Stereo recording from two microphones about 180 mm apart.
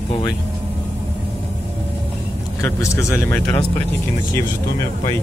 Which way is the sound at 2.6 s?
15° left (ahead or behind).